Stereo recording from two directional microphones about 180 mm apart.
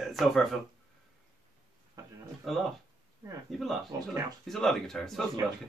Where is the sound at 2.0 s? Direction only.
20° right (ahead or behind).